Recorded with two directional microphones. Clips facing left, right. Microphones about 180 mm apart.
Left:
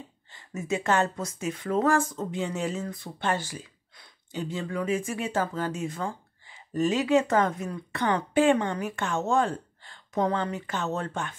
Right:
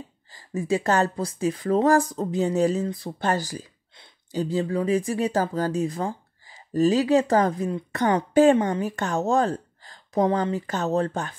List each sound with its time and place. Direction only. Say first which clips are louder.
0.3 s speech: right 6 dB; 35° right (ahead or behind)